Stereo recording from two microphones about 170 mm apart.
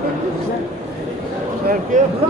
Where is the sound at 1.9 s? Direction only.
50° right (ahead or behind).